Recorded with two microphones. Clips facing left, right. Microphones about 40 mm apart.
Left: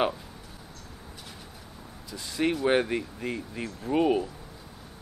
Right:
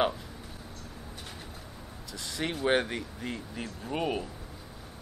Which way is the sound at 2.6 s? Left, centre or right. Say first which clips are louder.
Right 1 dB; centre.